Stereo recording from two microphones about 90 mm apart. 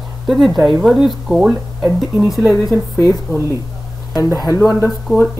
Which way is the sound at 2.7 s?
35° left (ahead or behind).